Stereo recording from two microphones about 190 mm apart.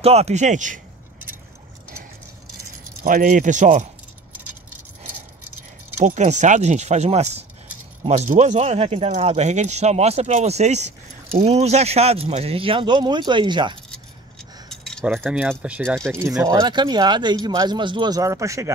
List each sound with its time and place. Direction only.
0.0 s speech: 35° right (ahead or behind)
3.0 s speech: 45° right (ahead or behind)
6.0 s speech: 40° right (ahead or behind)
14.7 s keys jangling: centre (ahead or behind)
15.4 s speech: centre (ahead or behind)
16.2 s speech: 20° right (ahead or behind)